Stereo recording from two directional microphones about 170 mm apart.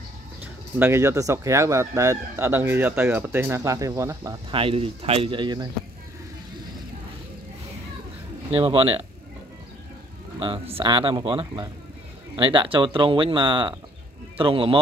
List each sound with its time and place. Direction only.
0.7 s speech: 15° right (ahead or behind)
8.5 s speech: 35° right (ahead or behind)
10.4 s speech: 30° right (ahead or behind)